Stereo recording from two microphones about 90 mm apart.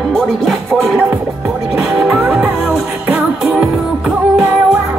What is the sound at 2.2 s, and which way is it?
Music, 20° right (ahead or behind).